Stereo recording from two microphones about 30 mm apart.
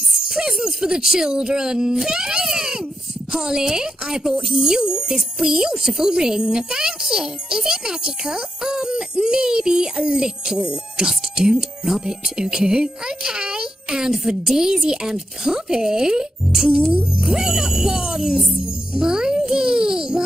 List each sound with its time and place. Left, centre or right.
0.7 s speech: centre
11.8 s speech: centre
12.4 s speech: right
18.9 s music: right